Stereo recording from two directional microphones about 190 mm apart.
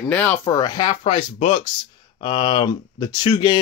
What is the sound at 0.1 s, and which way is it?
Speech, 10° left (ahead or behind).